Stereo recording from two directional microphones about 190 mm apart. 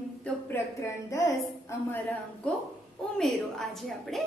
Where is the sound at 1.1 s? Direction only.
15° left (ahead or behind).